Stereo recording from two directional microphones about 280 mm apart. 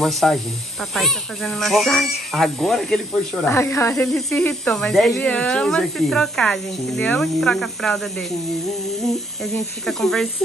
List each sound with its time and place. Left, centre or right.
0.0 s speech: centre